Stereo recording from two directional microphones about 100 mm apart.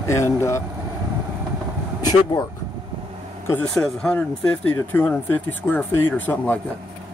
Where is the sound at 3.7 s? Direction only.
10° left (ahead or behind).